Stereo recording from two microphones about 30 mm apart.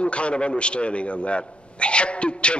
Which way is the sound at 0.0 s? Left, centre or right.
Left.